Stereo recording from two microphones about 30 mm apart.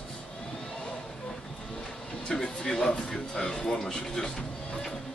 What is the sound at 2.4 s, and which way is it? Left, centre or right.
Speech, left.